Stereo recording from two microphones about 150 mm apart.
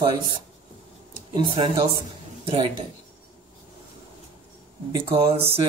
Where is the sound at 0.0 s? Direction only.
35° right (ahead or behind).